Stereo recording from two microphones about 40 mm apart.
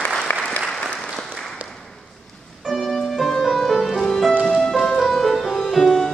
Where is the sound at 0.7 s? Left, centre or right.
Left.